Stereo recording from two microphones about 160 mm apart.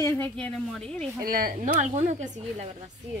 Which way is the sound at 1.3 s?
60° right (ahead or behind).